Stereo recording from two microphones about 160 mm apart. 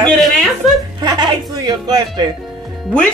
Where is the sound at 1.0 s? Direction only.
25° right (ahead or behind).